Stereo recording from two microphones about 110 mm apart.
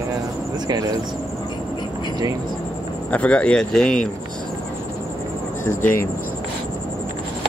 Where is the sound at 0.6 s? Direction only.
35° right (ahead or behind).